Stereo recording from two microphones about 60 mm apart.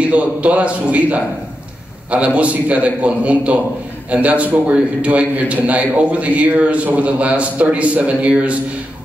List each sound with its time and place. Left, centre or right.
0.0 s a man's voice: right